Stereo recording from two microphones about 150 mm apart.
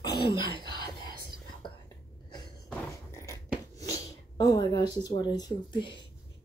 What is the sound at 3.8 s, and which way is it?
Sneeze, 25° left (ahead or behind).